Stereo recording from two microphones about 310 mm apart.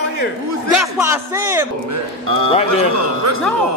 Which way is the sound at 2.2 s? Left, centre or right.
Right.